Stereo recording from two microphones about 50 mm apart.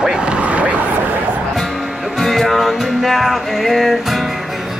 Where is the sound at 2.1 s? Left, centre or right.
Centre.